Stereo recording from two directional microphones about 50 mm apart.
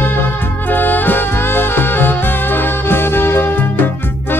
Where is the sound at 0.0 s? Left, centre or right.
Left.